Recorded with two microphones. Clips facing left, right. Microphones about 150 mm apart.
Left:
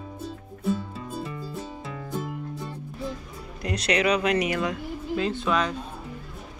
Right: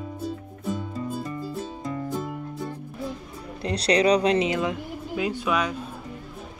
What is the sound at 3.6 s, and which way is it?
Speech, 30° right (ahead or behind).